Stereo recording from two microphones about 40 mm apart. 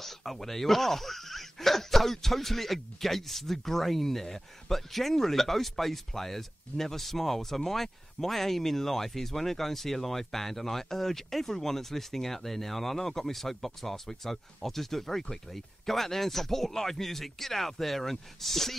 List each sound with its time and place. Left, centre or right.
0.0 s speech: centre